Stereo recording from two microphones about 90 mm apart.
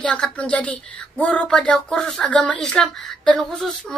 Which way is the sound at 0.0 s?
10° left (ahead or behind).